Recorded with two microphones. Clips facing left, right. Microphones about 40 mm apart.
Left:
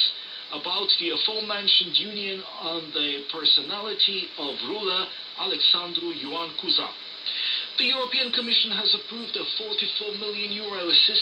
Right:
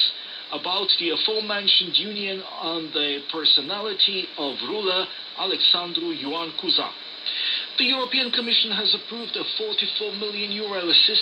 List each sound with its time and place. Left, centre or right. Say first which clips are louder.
0.0 s speech: right 2 dB; right